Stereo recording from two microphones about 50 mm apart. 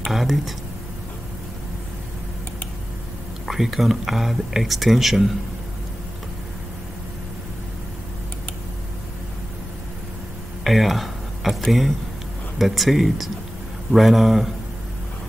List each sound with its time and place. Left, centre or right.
0.0 s speech: centre
3.4 s speech: centre
10.6 s speech: centre